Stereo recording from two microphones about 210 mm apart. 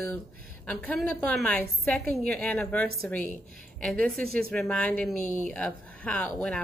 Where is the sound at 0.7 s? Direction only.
5° left (ahead or behind).